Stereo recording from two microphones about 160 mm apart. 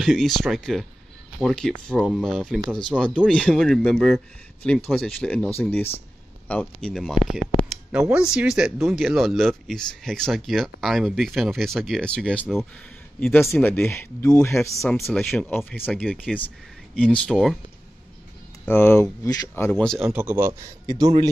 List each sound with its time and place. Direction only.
0.0 s speech: centre (ahead or behind); by 14.6 s 15° left (ahead or behind)
14.9 s speech: centre (ahead or behind)
18.7 s speech: 15° left (ahead or behind)
19.7 s speech: 5° left (ahead or behind)
20.1 s speech: 10° right (ahead or behind)